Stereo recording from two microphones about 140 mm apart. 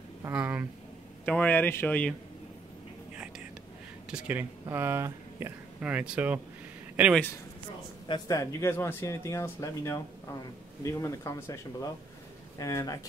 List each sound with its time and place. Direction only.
0.2 s speech: 15° right (ahead or behind)
1.2 s speech: 10° left (ahead or behind)
4.1 s speech: 15° right (ahead or behind)
8.1 s speech: 25° left (ahead or behind)